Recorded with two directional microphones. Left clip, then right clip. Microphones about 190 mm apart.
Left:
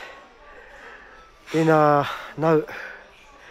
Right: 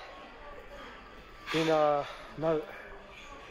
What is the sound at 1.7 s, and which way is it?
Speech, 35° left (ahead or behind).